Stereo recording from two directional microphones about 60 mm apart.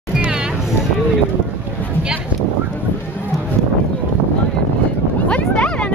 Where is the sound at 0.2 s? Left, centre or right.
Centre.